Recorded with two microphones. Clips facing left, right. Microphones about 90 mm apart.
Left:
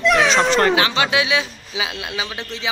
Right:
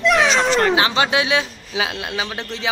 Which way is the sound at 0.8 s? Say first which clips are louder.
Right 1 dB; 30° right (ahead or behind).